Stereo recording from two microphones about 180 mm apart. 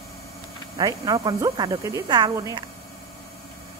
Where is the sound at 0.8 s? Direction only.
20° right (ahead or behind).